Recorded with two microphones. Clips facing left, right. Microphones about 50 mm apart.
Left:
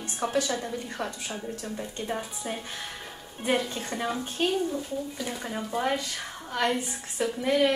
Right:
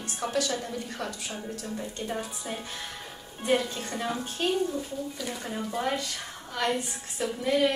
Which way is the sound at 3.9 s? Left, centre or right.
Centre.